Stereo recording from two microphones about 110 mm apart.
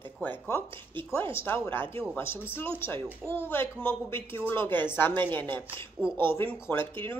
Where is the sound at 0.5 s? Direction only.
20° left (ahead or behind).